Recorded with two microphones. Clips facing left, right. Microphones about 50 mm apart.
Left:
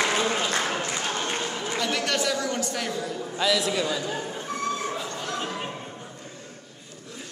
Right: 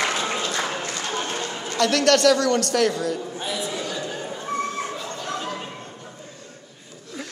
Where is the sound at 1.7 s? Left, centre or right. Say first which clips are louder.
Right 9 dB; right.